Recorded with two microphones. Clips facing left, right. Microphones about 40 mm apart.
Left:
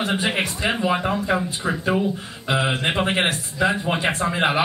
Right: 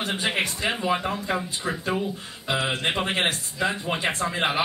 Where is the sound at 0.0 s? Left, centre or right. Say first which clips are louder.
Left 3 dB; centre.